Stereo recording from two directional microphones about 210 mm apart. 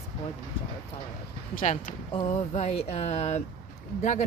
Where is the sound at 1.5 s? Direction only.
35° left (ahead or behind).